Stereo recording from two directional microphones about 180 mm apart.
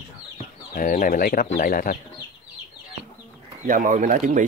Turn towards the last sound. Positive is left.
turn(degrees=-45)  # may be behind; listen again after turning